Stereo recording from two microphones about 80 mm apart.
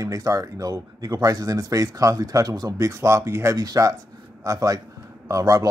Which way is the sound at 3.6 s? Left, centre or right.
Right.